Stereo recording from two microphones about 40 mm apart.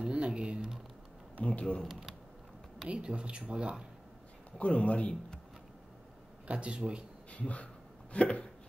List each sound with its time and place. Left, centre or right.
0.0 s a sound: right
1.4 s a man's voice: left
1.9 s speech: centre
2.9 s speech: right
4.5 s a man's voice: left
6.4 s speech: right
7.2 s speech: left